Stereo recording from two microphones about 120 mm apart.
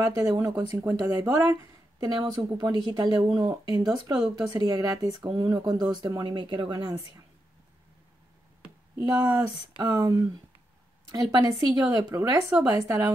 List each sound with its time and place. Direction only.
0.3 s a woman's voice: 35° right (ahead or behind)
0.7 s speech: 15° right (ahead or behind)
1.5 s a woman's voice: 35° right (ahead or behind)
8.9 s a woman's voice: 35° right (ahead or behind)
12.5 s speech: 10° right (ahead or behind)